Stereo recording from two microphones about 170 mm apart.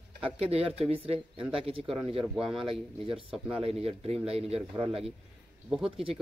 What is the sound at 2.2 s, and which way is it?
Speech, centre (ahead or behind).